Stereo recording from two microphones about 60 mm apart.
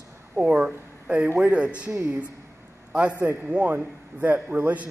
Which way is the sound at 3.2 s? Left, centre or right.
Right.